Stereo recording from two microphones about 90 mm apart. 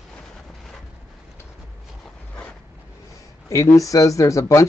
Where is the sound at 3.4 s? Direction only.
40° left (ahead or behind).